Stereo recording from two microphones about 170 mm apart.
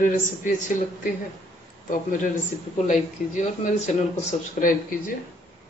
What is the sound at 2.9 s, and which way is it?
Speech, 45° left (ahead or behind).